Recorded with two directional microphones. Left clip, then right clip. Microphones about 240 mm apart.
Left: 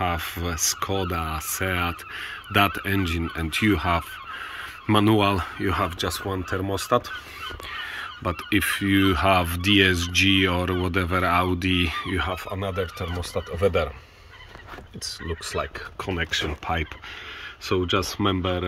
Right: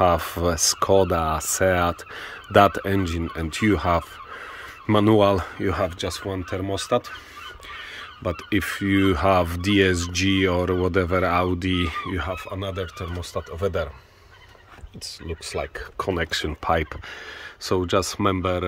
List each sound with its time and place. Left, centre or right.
0.0 s speech: right; by 13.8 s centre
15.6 s speech: right